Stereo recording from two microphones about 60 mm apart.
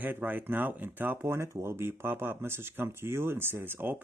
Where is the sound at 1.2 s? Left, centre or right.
Right.